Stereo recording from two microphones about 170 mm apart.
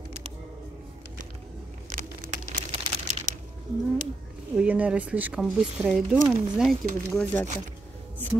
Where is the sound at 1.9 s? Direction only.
50° right (ahead or behind).